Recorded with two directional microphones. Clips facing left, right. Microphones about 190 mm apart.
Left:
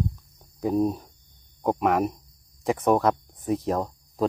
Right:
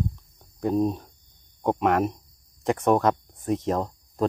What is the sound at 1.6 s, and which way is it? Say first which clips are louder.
Speech: even; centre (ahead or behind).